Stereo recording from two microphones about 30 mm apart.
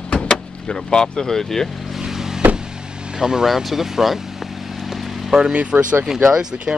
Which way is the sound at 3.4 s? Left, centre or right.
Centre.